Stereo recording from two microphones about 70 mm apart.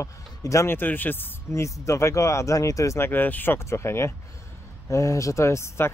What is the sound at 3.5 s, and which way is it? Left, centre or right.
Speech, left.